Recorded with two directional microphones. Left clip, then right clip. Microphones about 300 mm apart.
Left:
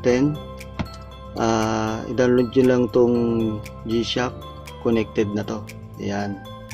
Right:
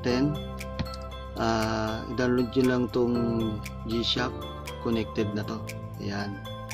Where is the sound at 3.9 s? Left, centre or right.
Centre.